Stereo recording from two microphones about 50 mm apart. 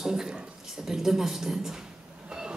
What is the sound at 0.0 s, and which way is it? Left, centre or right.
A woman's voice, centre.